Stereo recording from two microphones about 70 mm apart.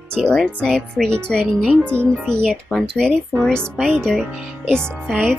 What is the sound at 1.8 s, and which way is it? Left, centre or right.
Speech, right.